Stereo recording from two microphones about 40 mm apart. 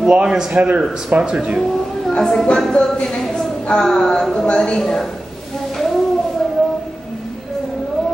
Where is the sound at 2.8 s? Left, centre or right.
Left.